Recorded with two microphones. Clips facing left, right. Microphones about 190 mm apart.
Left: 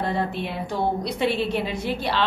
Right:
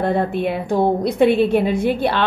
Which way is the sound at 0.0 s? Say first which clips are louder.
Right 7 dB; 55° right (ahead or behind).